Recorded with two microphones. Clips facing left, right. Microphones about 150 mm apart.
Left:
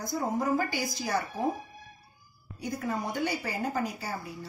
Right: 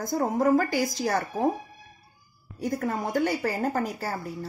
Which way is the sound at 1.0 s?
80° right.